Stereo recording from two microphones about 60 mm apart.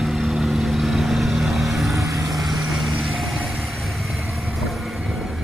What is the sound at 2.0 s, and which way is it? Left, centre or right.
Vehicle, right.